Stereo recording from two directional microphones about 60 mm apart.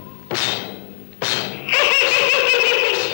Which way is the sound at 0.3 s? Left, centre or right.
Left.